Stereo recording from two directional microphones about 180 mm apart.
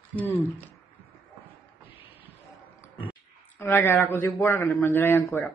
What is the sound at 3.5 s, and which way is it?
Speech, 15° left (ahead or behind).